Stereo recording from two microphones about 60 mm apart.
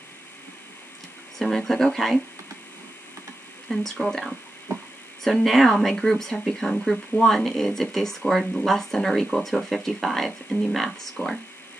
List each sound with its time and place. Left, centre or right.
1.4 s speech: centre
3.6 s speech: centre
11.2 s speech: left